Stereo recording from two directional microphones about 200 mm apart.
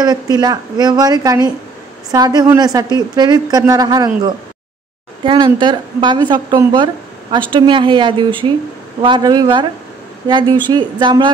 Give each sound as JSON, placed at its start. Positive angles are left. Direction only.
{"t": 0.0, "sound": "a woman's voice", "side_deg": -20}
{"t": 5.2, "sound": "a woman's voice", "side_deg": -25}